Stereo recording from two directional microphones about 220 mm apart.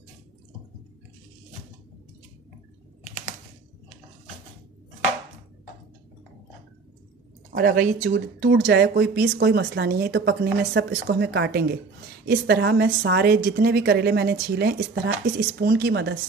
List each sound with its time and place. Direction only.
7.5 s a woman's voice: 40° right (ahead or behind)